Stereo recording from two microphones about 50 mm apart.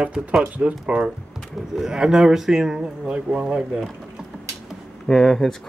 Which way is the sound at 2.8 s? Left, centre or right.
Centre.